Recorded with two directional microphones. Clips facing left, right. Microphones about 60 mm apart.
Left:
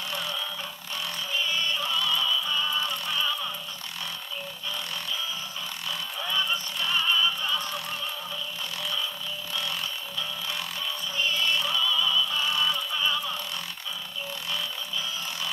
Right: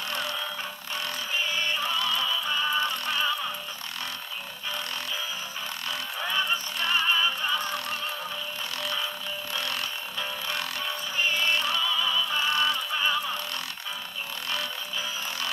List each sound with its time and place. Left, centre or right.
0.1 s music: right
1.4 s music: right
6.1 s music: right
10.8 s music: right
12.4 s a sound: right
12.9 s a sound: right